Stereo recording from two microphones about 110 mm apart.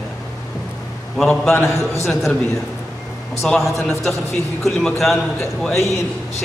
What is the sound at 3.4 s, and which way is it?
A man's voice, centre (ahead or behind).